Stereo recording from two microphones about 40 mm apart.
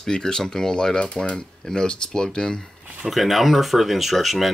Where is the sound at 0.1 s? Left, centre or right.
Centre.